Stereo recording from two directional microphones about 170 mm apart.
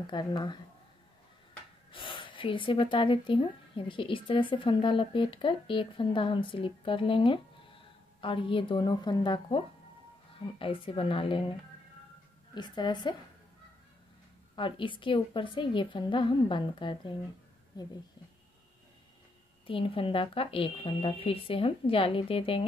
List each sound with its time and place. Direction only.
0.0 s speech: 25° left (ahead or behind)
1.9 s speech: 30° left (ahead or behind)
12.5 s speech: 25° left (ahead or behind)
14.5 s speech: 30° left (ahead or behind)
19.6 s speech: 30° left (ahead or behind)